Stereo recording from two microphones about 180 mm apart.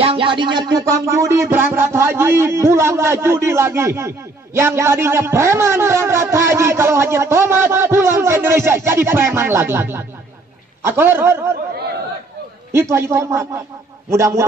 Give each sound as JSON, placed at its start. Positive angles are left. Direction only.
{"t": 0.0, "sound": "music", "side_deg": -30}
{"t": 12.7, "sound": "music", "side_deg": -15}